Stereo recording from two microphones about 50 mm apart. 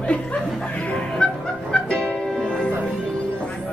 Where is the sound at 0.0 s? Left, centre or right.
Left.